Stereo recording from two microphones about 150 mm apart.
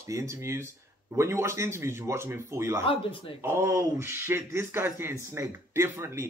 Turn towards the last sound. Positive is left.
turn(degrees=-15)  # may be behind; listen again after turning